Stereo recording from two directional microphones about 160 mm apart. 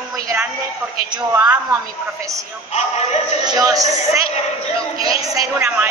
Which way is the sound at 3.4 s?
25° right (ahead or behind).